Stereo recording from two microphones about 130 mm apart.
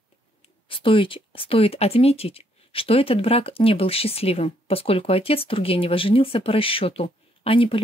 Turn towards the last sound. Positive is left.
turn(degrees=45)  # may be behind; listen again after turning